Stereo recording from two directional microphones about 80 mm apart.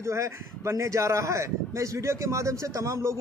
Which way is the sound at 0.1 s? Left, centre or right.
Right.